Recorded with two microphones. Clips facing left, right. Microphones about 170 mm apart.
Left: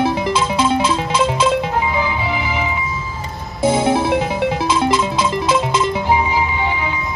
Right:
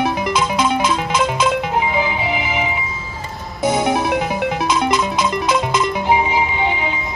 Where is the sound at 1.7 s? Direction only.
15° right (ahead or behind).